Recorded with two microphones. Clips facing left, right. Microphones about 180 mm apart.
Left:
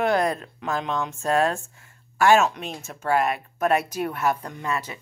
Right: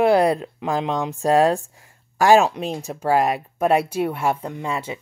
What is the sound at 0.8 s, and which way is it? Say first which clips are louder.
Speech: right 5 dB; 30° right (ahead or behind).